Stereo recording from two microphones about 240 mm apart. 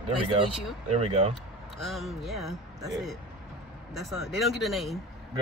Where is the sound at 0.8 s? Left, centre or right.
Right.